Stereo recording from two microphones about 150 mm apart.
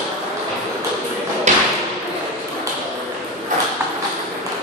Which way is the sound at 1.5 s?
50° right (ahead or behind).